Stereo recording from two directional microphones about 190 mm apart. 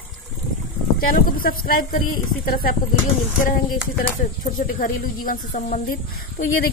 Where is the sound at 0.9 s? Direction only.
50° left (ahead or behind).